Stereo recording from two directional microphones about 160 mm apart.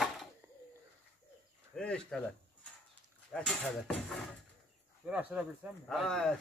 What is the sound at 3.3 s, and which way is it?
Speech, 5° left (ahead or behind).